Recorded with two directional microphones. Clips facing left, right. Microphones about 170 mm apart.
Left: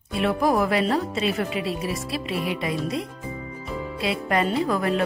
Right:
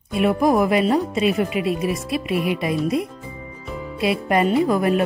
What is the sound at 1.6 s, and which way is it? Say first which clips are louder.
Speech: right 5 dB; 30° left (ahead or behind).